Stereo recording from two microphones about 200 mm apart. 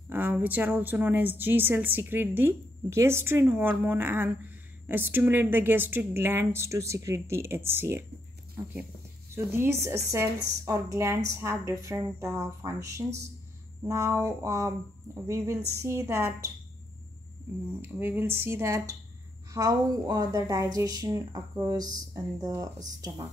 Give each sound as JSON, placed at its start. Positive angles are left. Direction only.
{"t": 0.1, "sound": "a woman's voice", "side_deg": -10}
{"t": 9.3, "sound": "a woman's voice", "side_deg": -10}
{"t": 17.8, "sound": "a woman's voice", "side_deg": -10}